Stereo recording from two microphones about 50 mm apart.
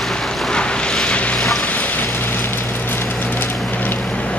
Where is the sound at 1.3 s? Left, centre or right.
Centre.